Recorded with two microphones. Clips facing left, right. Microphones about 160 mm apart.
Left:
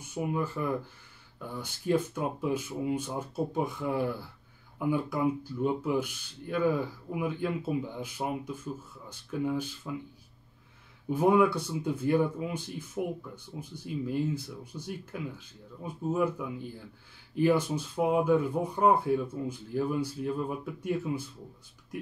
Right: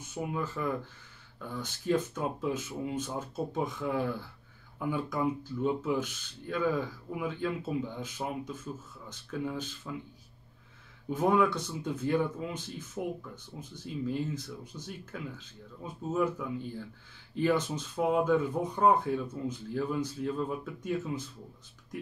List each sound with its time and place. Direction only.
0.1 s speech: 10° left (ahead or behind)
11.1 s speech: 10° left (ahead or behind)